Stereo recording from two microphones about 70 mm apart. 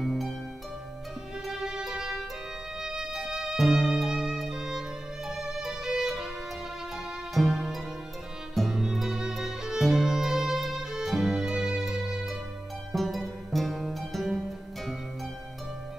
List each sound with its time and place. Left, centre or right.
0.0 s music: centre
1.4 s music: centre
7.3 s music: centre